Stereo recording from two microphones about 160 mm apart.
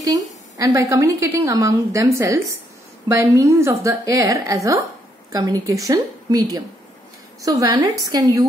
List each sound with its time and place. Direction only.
0.0 s a woman's voice: 20° right (ahead or behind)